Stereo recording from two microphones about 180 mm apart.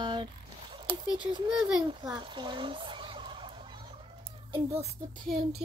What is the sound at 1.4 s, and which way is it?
Speech, 5° right (ahead or behind).